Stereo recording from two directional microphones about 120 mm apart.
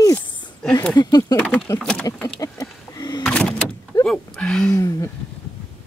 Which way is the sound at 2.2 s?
25° left (ahead or behind).